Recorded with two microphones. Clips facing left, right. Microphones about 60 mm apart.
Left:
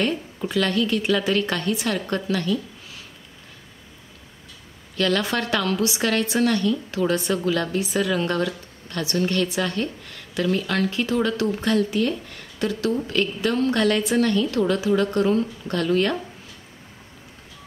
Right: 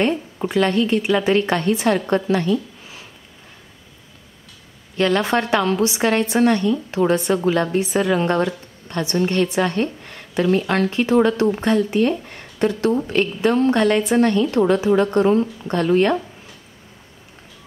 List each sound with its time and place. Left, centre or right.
0.0 s a woman's voice: right
4.9 s a woman's voice: right